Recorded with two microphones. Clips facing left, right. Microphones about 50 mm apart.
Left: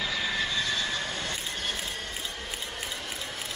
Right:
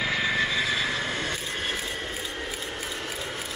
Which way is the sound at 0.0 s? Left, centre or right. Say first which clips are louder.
Right 5 dB; right.